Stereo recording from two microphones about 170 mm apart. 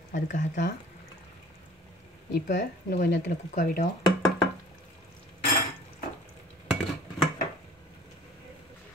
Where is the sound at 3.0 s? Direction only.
90° left.